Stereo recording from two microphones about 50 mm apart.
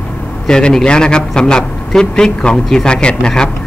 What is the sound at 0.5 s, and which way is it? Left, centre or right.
A man's voice, centre.